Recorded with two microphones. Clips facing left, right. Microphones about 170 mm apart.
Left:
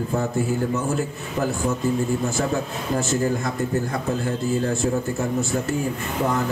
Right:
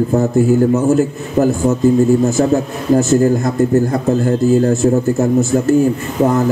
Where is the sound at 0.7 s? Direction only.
45° right (ahead or behind).